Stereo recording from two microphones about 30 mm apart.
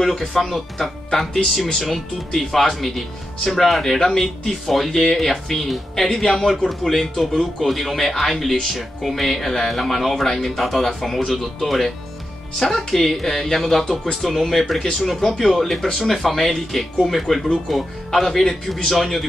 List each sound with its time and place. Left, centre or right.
0.0 s speech: centre
1.3 s speech: centre
1.9 s speech: centre
15.2 s speech: centre